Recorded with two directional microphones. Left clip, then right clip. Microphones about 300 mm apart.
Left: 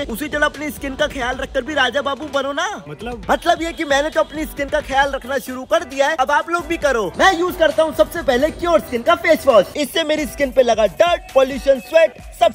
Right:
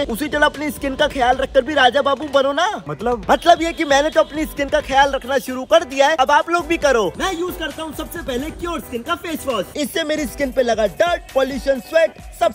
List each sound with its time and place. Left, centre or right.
0.0 s a man's voice: centre
10.2 s a man's voice: left
10.8 s a man's voice: centre